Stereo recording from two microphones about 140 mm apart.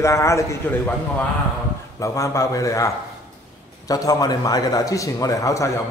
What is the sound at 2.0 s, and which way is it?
Speech, 20° left (ahead or behind).